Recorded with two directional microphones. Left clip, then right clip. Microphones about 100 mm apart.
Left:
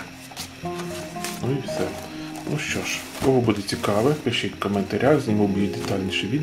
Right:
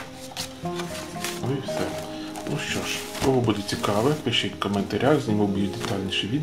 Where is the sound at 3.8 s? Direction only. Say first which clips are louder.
Left 2 dB; 15° left (ahead or behind).